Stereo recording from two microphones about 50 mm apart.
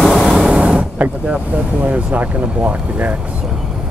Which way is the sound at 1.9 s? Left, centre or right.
Right.